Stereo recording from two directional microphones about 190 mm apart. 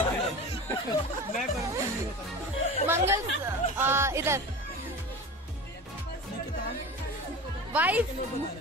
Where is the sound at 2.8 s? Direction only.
15° right (ahead or behind).